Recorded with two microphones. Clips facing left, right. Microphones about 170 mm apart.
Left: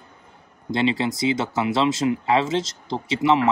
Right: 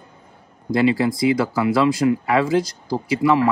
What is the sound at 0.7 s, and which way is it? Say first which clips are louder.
Speech: right 4 dB; 25° left (ahead or behind).